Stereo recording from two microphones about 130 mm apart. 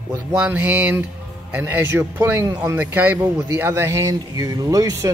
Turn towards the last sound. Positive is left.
turn(degrees=-25)  # may be behind; listen again after turning